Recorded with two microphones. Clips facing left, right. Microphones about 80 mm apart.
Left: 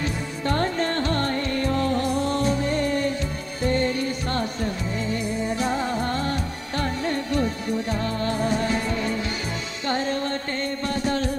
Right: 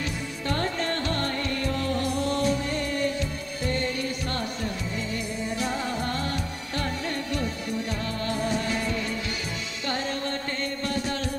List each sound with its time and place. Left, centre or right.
0.5 s music: left
5.6 s music: left